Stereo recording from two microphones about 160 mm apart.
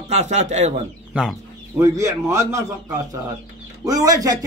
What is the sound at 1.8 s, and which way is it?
Speech, 20° right (ahead or behind).